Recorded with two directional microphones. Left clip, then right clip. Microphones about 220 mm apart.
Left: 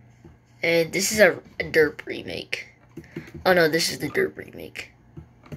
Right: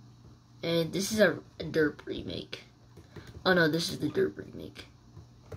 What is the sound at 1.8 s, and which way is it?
Speech, 5° left (ahead or behind).